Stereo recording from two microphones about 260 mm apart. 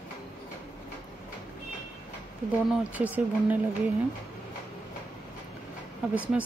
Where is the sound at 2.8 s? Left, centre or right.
Centre.